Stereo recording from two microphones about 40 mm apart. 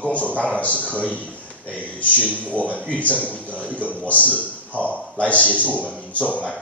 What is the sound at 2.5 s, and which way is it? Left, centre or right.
A man's voice, left.